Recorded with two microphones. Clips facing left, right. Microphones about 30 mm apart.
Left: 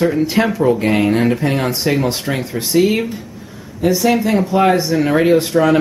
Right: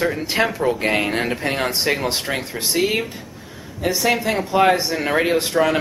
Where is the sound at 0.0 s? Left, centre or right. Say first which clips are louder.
Left 5 dB; centre.